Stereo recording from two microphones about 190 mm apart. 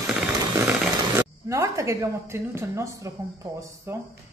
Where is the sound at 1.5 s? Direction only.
15° right (ahead or behind).